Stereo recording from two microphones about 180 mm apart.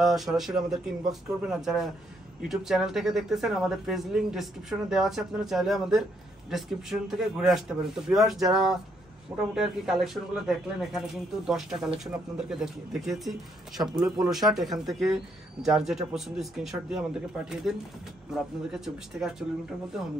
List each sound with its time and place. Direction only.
0.0 s speech: centre (ahead or behind)